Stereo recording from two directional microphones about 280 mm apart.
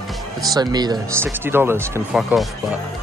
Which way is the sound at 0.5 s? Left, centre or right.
Centre.